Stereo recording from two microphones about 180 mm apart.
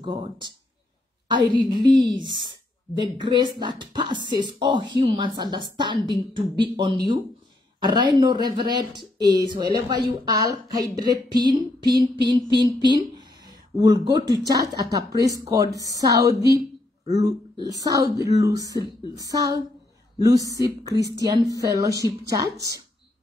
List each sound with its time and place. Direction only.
0.0 s speech: 25° right (ahead or behind)
1.5 s speech: 25° right (ahead or behind)